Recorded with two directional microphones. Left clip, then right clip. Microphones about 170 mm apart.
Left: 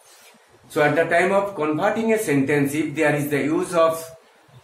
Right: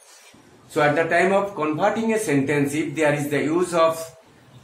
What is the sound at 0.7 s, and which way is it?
Speech, 10° right (ahead or behind).